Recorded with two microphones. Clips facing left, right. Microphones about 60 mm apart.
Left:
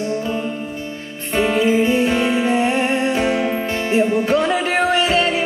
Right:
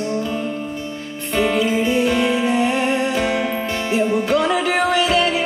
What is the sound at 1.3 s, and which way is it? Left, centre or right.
Music, left.